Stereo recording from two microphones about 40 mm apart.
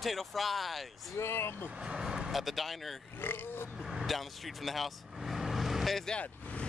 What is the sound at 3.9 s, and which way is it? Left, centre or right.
Vehicle, centre.